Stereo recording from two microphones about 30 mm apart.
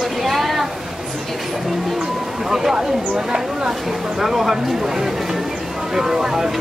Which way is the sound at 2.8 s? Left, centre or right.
Right.